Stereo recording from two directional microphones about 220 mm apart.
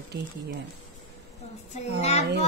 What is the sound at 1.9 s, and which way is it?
Speech, 30° left (ahead or behind).